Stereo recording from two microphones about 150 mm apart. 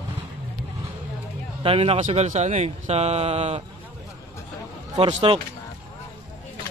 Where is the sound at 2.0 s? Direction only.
50° right (ahead or behind).